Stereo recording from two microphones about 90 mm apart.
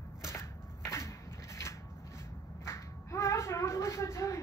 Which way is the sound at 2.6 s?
30° left (ahead or behind).